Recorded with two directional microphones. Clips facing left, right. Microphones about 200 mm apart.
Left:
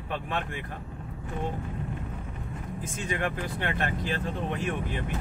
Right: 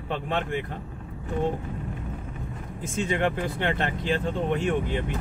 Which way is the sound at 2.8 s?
25° right (ahead or behind).